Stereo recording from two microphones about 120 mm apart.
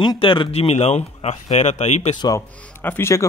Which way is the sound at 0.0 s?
40° left (ahead or behind).